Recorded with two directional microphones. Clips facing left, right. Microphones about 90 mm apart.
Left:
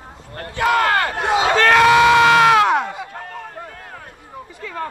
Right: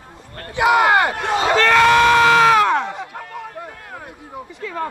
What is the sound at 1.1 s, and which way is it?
Battle cry, 15° left (ahead or behind).